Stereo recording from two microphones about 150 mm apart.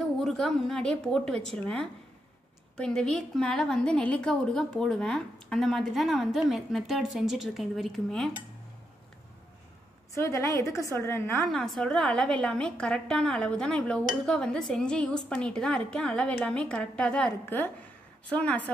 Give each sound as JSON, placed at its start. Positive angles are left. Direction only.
{"t": 0.0, "sound": "a woman's voice", "side_deg": 5}
{"t": 10.1, "sound": "a woman's voice", "side_deg": 20}
{"t": 11.4, "sound": "a woman's voice", "side_deg": 0}